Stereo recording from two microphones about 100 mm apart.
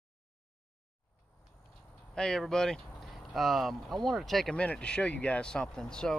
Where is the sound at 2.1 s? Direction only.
5° left (ahead or behind).